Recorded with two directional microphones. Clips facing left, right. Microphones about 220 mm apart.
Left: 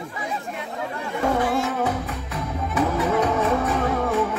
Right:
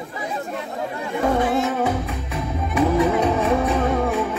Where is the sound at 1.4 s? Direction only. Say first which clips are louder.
Right 2 dB; 20° right (ahead or behind).